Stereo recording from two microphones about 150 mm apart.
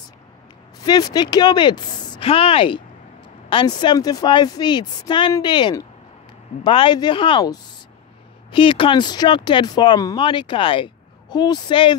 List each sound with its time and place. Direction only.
0.8 s speech: 25° left (ahead or behind)